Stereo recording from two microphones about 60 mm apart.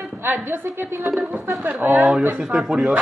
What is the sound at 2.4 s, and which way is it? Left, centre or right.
Speech, centre.